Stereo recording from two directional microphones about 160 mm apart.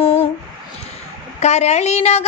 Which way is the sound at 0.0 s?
35° left (ahead or behind).